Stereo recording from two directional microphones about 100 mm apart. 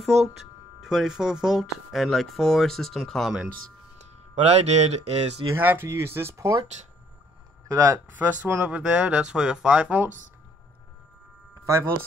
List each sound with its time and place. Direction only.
0.1 s speech: 90° right
0.7 s speech: 5° right (ahead or behind)
4.5 s speech: 90° right
5.5 s speech: 20° right (ahead or behind)
7.6 s speech: 30° right (ahead or behind)
8.1 s speech: 15° right (ahead or behind)
11.6 s speech: 35° right (ahead or behind)